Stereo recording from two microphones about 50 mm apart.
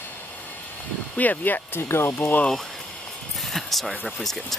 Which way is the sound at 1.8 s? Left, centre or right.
Left.